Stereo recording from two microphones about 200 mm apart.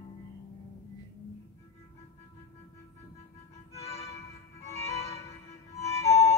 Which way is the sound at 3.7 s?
30° left (ahead or behind).